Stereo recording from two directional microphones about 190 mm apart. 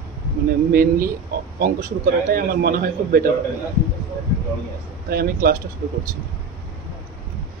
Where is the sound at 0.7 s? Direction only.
50° right (ahead or behind).